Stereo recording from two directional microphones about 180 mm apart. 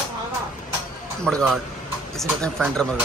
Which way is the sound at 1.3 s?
5° left (ahead or behind).